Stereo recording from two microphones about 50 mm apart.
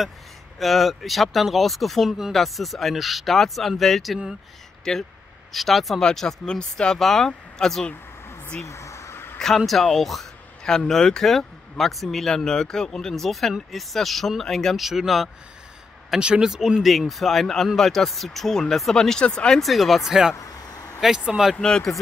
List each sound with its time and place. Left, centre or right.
0.6 s speech: centre
5.5 s speech: centre
6.0 s speech: centre
7.0 s speech: centre
8.6 s a sound: left
9.7 s speech: centre
14.8 s speech: centre
16.2 s speech: centre
16.8 s speech: centre
19.6 s speech: centre
20.1 s speech: centre
21.5 s speech: centre